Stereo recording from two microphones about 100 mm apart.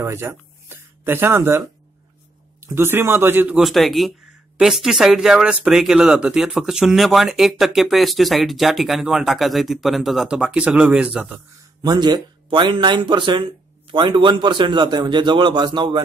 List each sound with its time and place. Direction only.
0.0 s speech: 25° right (ahead or behind)
2.6 s speech: 25° right (ahead or behind)
3.5 s speech: centre (ahead or behind)
11.8 s speech: 45° right (ahead or behind)